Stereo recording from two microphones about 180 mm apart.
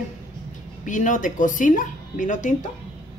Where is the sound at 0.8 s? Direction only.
45° left (ahead or behind).